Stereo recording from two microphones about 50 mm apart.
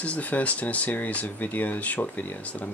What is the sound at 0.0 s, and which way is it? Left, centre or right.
Speech, left.